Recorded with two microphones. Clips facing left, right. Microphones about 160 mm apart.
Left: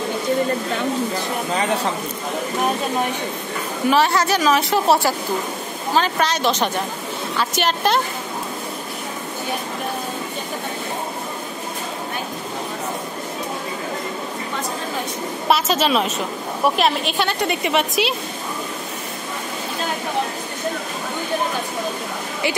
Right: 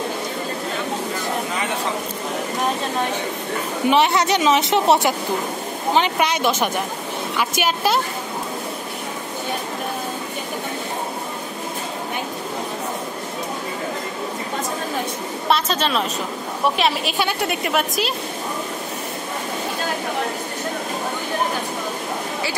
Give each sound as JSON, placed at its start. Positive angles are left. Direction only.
{"t": 3.9, "sound": "a woman's voice", "side_deg": -20}
{"t": 15.4, "sound": "a woman's voice", "side_deg": 5}